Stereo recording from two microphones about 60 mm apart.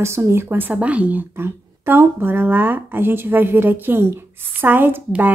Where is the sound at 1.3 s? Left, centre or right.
Right.